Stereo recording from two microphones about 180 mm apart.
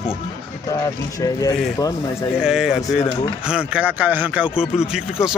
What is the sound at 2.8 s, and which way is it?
Speech, 20° left (ahead or behind).